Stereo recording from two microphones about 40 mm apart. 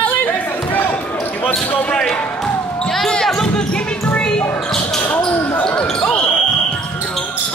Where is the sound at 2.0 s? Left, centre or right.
Centre.